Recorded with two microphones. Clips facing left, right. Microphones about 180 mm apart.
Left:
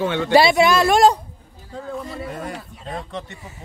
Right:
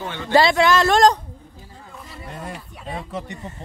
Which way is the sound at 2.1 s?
70° left (ahead or behind).